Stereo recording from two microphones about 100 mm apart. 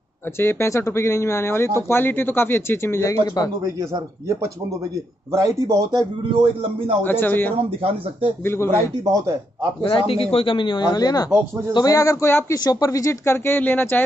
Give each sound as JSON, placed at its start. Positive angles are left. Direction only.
{"t": 0.4, "sound": "speech", "side_deg": 25}
{"t": 5.3, "sound": "speech", "side_deg": -30}
{"t": 5.9, "sound": "speech", "side_deg": -60}
{"t": 7.0, "sound": "speech", "side_deg": 20}
{"t": 9.0, "sound": "speech", "side_deg": -35}
{"t": 9.8, "sound": "a man's voice", "side_deg": 65}
{"t": 12.5, "sound": "speech", "side_deg": 40}